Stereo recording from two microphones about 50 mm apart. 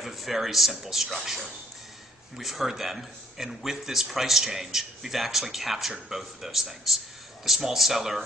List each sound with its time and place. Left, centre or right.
0.0 s a man's voice: centre